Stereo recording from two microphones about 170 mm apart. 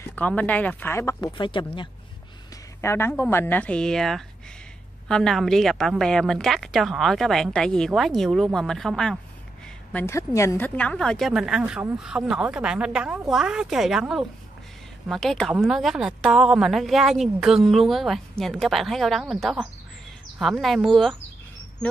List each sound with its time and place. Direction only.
0.0 s speech: 10° left (ahead or behind); by 1.9 s 30° left (ahead or behind)
2.8 s a woman's voice: 15° left (ahead or behind)
9.9 s a woman's voice: 15° left (ahead or behind); by 21.2 s centre (ahead or behind)